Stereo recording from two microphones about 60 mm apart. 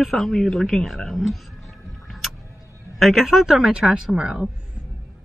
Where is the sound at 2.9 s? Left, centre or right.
Centre.